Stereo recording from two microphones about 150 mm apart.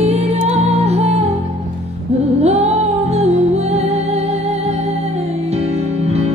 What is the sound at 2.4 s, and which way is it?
Music, 45° right (ahead or behind).